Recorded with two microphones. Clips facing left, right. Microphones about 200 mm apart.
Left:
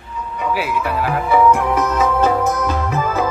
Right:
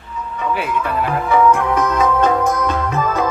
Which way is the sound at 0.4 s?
5° left (ahead or behind).